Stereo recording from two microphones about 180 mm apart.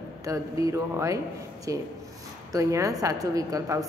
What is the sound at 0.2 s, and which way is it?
A woman's voice, 20° right (ahead or behind).